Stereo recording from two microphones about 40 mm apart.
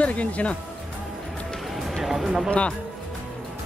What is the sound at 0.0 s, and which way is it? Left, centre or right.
Speech, left.